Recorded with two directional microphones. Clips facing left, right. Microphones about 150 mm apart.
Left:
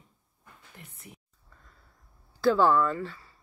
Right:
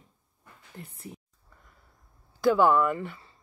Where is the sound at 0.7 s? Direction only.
30° right (ahead or behind).